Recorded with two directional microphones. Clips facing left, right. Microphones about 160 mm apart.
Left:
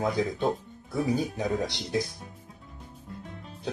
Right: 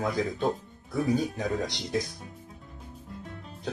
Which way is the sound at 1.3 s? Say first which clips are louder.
Left 1 dB; 5° left (ahead or behind).